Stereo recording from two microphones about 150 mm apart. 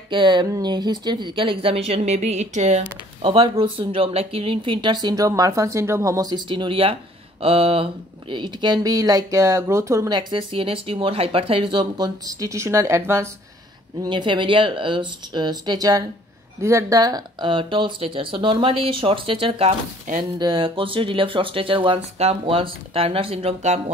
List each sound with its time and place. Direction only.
0.1 s speech: 30° right (ahead or behind); by 2.8 s 50° right (ahead or behind)
3.2 s speech: 35° right (ahead or behind); by 13.3 s 15° right (ahead or behind)
14.0 s speech: 35° right (ahead or behind)